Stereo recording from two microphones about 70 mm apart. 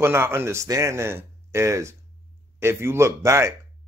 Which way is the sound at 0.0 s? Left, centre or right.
Right.